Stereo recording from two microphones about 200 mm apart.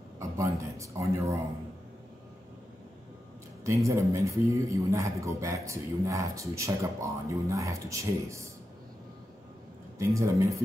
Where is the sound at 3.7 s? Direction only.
15° right (ahead or behind).